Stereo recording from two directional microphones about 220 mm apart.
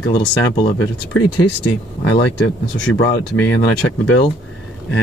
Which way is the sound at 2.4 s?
55° left (ahead or behind).